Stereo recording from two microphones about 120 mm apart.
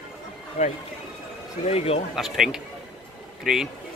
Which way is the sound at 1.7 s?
60° left (ahead or behind).